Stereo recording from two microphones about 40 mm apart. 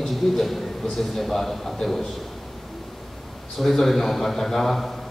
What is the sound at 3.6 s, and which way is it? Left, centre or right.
A man's voice, centre.